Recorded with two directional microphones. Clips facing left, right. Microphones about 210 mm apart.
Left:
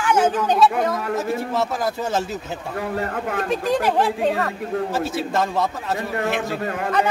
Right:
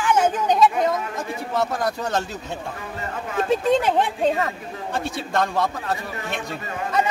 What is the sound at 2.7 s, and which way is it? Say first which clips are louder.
Speech: left 7 dB; 60° left (ahead or behind).